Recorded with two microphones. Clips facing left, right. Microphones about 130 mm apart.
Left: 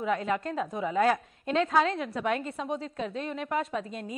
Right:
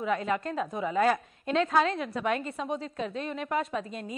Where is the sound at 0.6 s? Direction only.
Centre (ahead or behind).